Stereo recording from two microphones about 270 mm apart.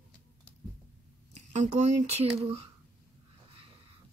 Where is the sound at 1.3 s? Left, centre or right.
Right.